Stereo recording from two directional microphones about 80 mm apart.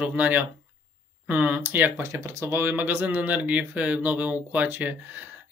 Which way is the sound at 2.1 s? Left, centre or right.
Right.